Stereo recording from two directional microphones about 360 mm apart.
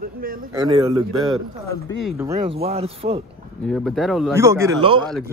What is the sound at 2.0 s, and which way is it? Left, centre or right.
Speech, centre.